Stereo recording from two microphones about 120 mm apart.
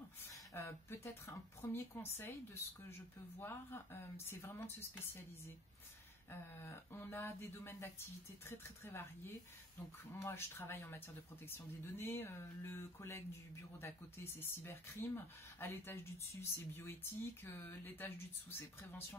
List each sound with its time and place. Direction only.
0.3 s speech: 25° left (ahead or behind)
6.6 s speech: 20° left (ahead or behind)
10.1 s speech: 20° left (ahead or behind)